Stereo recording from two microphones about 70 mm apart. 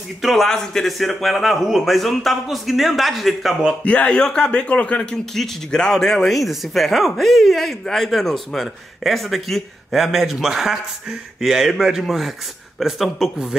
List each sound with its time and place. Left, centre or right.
0.2 s speech: centre
3.8 s speech: centre
5.1 s speech: centre